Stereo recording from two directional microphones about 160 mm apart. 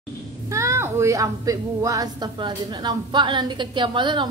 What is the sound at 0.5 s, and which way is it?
A woman's voice, 20° right (ahead or behind).